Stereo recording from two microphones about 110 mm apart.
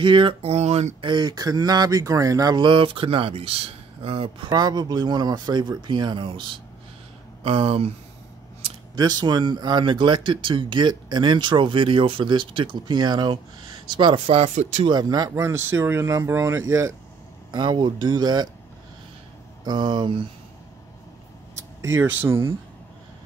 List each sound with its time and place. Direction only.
0.0 s speech: 50° right (ahead or behind); by 0.9 s 85° right
1.0 s speech: 40° right (ahead or behind)
4.5 s speech: 40° right (ahead or behind); by 7.9 s 60° right (ahead or behind)
8.9 s speech: 40° right (ahead or behind)
14.2 s speech: 70° right (ahead or behind); by 14.9 s 90° right
14.9 s speech: 35° right (ahead or behind)
17.5 s speech: 45° right (ahead or behind)
19.6 s speech: 40° right (ahead or behind)
21.5 s speech: 25° right (ahead or behind)